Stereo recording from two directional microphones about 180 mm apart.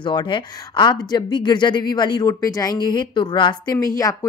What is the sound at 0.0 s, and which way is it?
Speech, 25° left (ahead or behind).